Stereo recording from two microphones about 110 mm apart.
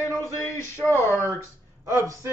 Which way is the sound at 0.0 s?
25° right (ahead or behind).